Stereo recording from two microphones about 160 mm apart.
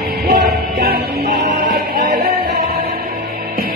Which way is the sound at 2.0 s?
70° right (ahead or behind).